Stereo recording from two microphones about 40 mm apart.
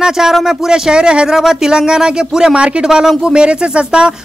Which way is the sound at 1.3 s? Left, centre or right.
Centre.